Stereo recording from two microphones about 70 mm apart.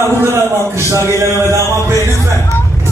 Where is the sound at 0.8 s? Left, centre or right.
Right.